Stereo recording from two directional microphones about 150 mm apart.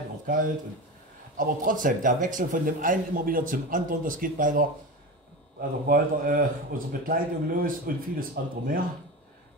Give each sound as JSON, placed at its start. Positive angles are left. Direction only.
{"t": 1.3, "sound": "a man's voice", "side_deg": -65}